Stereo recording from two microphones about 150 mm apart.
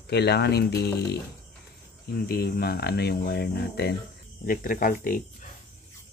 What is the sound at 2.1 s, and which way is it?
Speech, 85° left.